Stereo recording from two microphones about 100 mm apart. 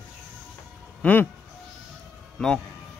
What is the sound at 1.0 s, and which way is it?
Speech, 15° left (ahead or behind).